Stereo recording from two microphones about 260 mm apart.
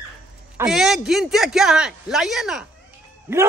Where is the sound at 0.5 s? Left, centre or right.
Centre.